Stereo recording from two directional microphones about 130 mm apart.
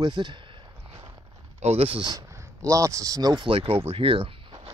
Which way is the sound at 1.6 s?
50° right (ahead or behind).